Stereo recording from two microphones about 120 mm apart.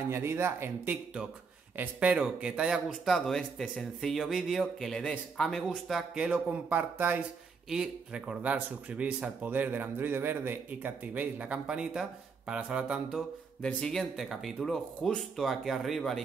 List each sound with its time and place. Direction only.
0.1 s speech: 20° right (ahead or behind)
13.6 s speech: 5° left (ahead or behind)